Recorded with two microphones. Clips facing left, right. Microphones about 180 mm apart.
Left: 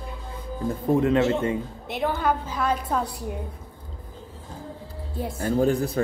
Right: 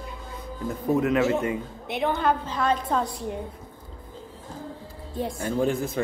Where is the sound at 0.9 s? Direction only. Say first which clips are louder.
Left 2 dB; 30° left (ahead or behind).